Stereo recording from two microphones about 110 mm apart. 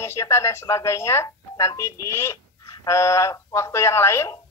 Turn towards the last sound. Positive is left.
turn(degrees=25)  # may be behind; listen again after turning